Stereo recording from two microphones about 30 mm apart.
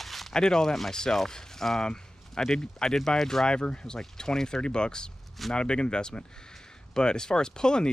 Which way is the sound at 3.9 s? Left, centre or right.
Centre.